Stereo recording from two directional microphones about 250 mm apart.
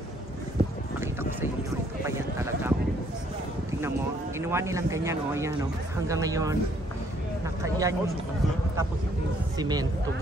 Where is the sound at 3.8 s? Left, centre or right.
Centre.